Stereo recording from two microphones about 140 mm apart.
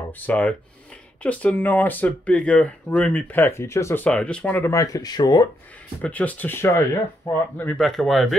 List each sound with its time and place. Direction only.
0.2 s speech: 10° left (ahead or behind)
4.7 s speech: 25° left (ahead or behind)
6.0 s speech: 10° left (ahead or behind)
7.8 s speech: centre (ahead or behind)